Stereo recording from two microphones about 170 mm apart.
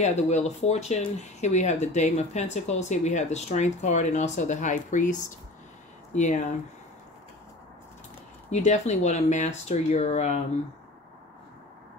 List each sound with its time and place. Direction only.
0.0 s speech: 40° left (ahead or behind)
8.5 s speech: 40° left (ahead or behind)